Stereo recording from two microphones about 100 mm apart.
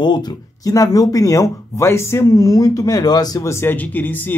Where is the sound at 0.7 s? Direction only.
35° left (ahead or behind).